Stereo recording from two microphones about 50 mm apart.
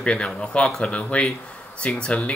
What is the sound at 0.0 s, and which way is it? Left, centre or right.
Speech, centre.